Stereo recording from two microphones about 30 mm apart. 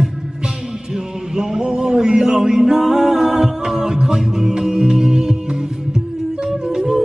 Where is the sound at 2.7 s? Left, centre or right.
Centre.